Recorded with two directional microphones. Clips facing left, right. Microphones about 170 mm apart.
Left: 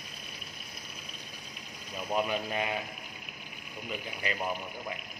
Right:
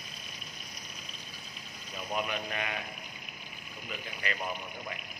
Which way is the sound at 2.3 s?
25° left (ahead or behind).